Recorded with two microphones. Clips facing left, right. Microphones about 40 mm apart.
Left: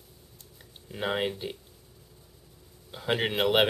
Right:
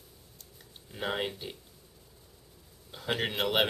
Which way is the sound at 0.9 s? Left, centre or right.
Centre.